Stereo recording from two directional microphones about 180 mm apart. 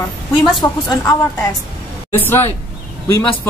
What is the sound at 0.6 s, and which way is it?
Speech, 15° left (ahead or behind).